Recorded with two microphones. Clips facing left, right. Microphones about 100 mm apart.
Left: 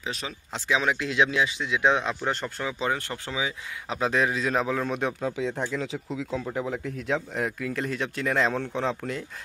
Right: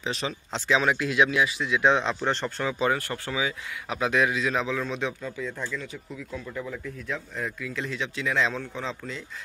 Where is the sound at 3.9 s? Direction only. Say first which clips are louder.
Even; 35° left (ahead or behind); by 5.6 s 70° left (ahead or behind).